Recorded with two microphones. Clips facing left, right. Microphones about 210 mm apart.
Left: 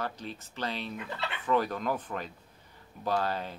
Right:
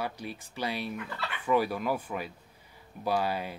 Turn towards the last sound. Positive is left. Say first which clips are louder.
# right 1 dB
turn(degrees=-10)  # may be behind; listen again after turning